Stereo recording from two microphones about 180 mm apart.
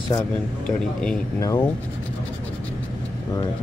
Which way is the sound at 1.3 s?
15° left (ahead or behind).